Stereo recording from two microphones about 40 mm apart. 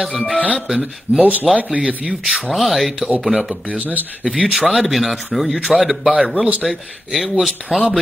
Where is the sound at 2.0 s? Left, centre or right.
Right.